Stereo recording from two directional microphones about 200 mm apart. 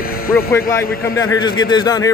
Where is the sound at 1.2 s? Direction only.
20° left (ahead or behind).